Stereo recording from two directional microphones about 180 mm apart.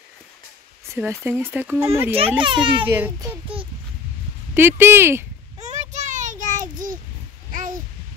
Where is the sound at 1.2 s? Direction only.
10° right (ahead or behind).